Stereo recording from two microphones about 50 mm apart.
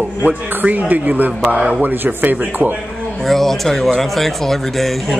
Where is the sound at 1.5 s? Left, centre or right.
Right.